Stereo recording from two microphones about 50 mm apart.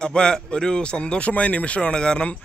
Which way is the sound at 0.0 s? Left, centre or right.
Centre.